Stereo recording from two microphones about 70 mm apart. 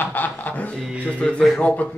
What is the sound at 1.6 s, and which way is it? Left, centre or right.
Speech, left.